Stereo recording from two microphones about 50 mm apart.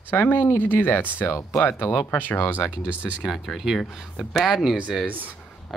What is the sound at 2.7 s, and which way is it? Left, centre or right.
Speech, right.